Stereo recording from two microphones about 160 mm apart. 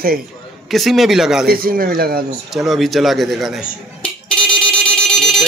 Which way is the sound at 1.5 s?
70° right (ahead or behind).